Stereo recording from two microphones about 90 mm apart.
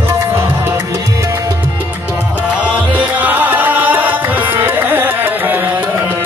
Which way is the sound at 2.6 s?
20° right (ahead or behind).